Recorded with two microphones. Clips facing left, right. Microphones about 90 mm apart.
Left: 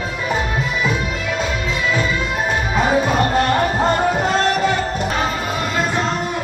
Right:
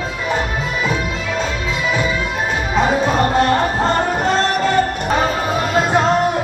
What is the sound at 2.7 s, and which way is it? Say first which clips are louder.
Music: right 1 dB; centre (ahead or behind).